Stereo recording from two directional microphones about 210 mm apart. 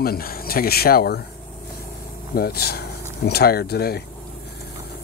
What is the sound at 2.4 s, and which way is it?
Speech, 50° left (ahead or behind).